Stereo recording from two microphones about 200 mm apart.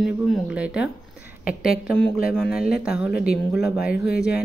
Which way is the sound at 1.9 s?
5° left (ahead or behind).